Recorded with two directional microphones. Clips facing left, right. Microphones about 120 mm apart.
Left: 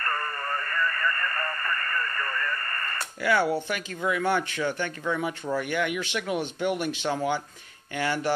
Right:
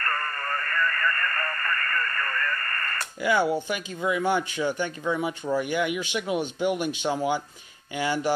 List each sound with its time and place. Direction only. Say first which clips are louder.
0.0 s radio: right 1 dB; 15° left (ahead or behind)
3.2 s speech: right 1 dB; 15° right (ahead or behind)